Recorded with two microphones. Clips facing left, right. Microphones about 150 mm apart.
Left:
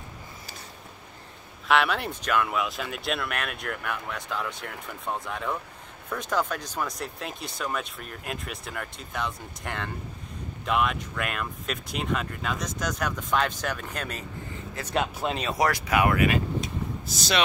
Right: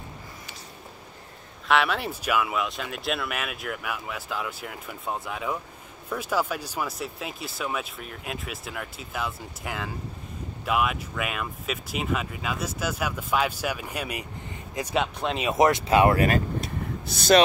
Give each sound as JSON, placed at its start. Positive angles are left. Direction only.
{"t": 1.7, "sound": "speech", "side_deg": 0}
{"t": 15.0, "sound": "speech", "side_deg": 0}
{"t": 15.5, "sound": "speech", "side_deg": -25}
{"t": 17.0, "sound": "speech", "side_deg": -60}